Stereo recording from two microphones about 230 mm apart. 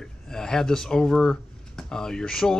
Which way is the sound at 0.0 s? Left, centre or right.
Centre.